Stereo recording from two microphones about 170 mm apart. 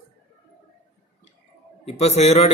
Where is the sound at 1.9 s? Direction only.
40° left (ahead or behind).